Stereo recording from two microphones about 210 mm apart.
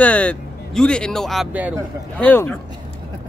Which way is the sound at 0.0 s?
5° left (ahead or behind).